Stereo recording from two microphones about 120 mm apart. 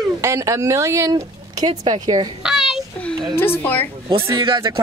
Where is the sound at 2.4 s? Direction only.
5° right (ahead or behind).